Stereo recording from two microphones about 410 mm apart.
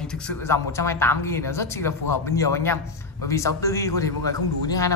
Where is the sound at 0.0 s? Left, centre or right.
Centre.